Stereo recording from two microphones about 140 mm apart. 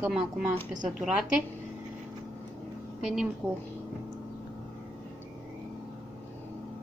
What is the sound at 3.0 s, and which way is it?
Speech, 5° right (ahead or behind).